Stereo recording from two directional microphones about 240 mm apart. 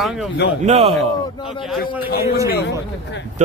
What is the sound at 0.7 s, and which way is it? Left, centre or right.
Speech, right.